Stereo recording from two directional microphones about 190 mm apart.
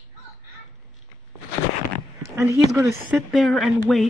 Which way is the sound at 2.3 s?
15° right (ahead or behind).